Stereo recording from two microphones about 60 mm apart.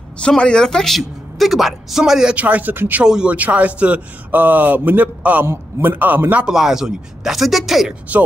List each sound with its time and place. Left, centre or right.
0.2 s speech: centre
2.3 s a man's voice: right
2.7 s a man's voice: right
3.0 s speech: centre
3.3 s a man's voice: right
6.4 s speech: centre
8.1 s a man's voice: right